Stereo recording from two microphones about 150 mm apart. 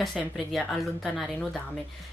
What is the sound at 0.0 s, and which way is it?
Speech, centre (ahead or behind).